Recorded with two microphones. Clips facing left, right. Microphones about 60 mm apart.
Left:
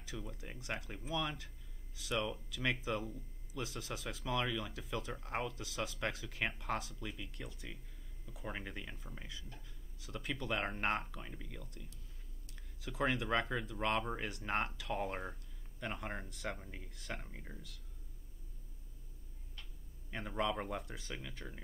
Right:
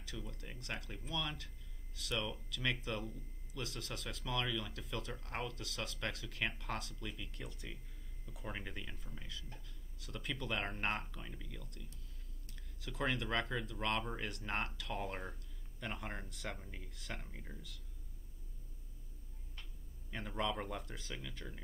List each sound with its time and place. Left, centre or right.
0.0 s speech: centre
9.9 s speech: centre
12.8 s speech: centre
20.1 s speech: centre